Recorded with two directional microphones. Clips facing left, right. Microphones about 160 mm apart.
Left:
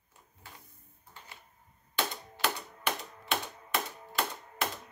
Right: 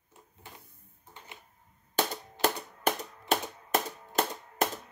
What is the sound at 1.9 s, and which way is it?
Typewriter, 45° right (ahead or behind).